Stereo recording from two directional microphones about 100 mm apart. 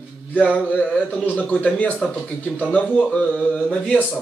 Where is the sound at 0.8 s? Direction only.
15° left (ahead or behind).